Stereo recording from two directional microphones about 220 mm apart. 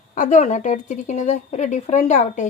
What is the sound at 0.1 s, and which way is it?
A woman's voice, 35° left (ahead or behind).